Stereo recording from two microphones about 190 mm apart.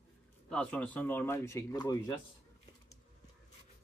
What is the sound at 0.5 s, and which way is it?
Speech, 5° left (ahead or behind).